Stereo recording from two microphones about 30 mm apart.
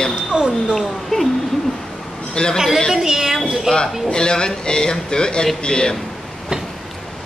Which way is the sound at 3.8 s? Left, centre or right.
Left.